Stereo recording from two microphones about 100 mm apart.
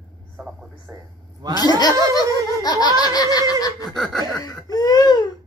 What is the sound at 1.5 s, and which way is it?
Speech, 45° left (ahead or behind).